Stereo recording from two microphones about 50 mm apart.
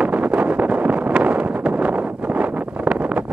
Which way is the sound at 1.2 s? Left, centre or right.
Right.